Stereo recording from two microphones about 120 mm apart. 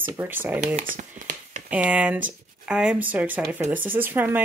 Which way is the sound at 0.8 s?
90° right.